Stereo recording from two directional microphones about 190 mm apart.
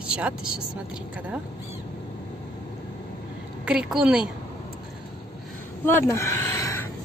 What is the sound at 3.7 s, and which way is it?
Speech, 5° right (ahead or behind).